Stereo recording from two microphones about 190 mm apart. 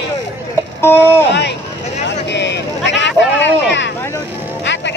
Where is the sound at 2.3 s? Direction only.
65° left (ahead or behind).